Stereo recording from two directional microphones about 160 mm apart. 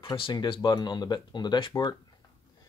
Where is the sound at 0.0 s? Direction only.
30° left (ahead or behind).